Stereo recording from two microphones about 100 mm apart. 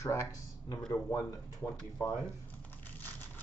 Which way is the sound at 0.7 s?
45° left (ahead or behind).